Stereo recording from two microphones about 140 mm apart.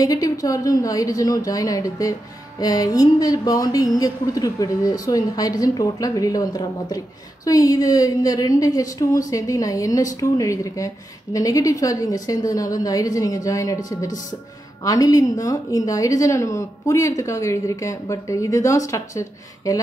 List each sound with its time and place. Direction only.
0.0 s a woman's voice: 25° left (ahead or behind)
14.8 s a woman's voice: 25° left (ahead or behind)